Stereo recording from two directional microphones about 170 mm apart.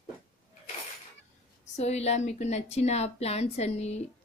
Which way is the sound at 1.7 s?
40° left (ahead or behind).